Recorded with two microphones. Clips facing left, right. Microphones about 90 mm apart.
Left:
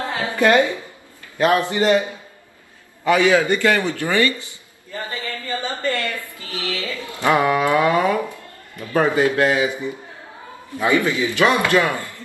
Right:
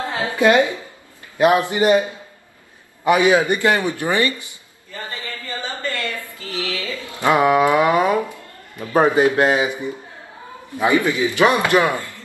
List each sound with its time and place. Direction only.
0.1 s a woman's voice: 20° right (ahead or behind)
5.9 s a woman's voice: 25° left (ahead or behind)
6.6 s music: 20° left (ahead or behind)
6.9 s a man's voice: 20° right (ahead or behind)